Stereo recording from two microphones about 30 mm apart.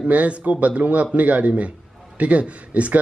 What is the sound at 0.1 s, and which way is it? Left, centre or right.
A man's voice, right.